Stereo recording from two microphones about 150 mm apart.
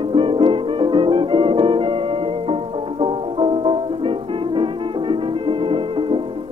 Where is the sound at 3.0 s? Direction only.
35° right (ahead or behind).